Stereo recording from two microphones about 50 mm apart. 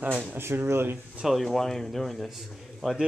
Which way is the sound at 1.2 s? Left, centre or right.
Centre.